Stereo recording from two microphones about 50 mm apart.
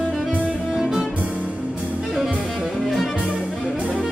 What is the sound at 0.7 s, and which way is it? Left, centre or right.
Music, centre.